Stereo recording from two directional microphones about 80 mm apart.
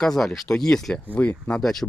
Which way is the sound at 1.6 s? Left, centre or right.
Centre.